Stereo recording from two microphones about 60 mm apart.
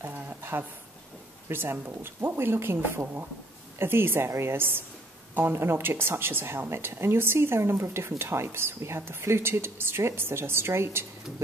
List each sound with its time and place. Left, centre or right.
0.0 s a woman's voice: right